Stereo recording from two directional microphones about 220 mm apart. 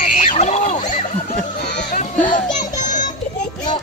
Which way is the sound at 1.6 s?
50° left (ahead or behind).